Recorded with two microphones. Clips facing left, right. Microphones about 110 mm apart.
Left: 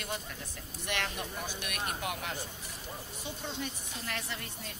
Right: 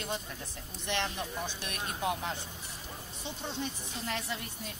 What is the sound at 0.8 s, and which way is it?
Speech, 20° right (ahead or behind).